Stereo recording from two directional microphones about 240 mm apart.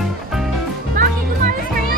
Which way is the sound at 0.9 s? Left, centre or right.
Right.